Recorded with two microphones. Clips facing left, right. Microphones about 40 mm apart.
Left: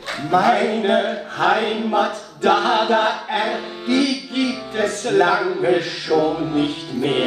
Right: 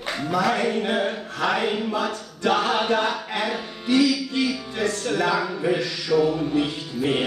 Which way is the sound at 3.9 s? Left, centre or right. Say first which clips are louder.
Even; left.